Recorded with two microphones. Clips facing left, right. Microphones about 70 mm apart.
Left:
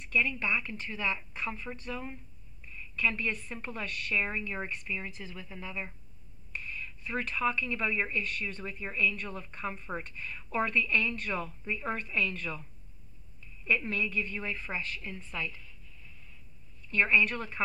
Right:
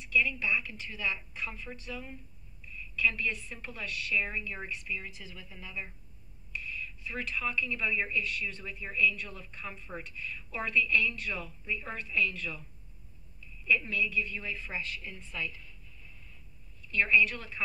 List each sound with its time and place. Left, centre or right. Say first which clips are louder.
0.0 s speech: even; left
6.5 s speech: right 1 dB; left
13.7 s speech: right 1 dB; left
16.9 s speech: even; left